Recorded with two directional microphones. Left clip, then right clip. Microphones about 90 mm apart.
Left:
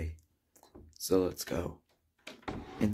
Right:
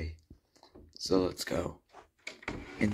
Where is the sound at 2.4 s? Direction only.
20° left (ahead or behind).